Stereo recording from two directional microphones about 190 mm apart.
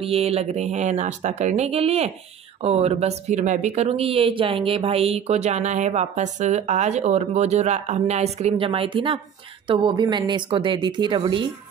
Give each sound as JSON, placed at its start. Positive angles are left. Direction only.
{"t": 0.0, "sound": "speech", "side_deg": -30}